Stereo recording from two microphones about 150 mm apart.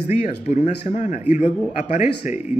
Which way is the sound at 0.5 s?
55° left (ahead or behind).